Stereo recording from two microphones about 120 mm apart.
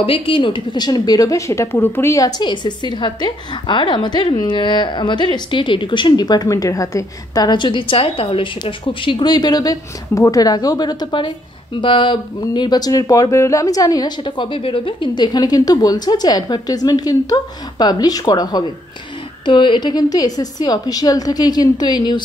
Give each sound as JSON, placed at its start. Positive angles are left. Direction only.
{"t": 0.0, "sound": "a woman's voice", "side_deg": 50}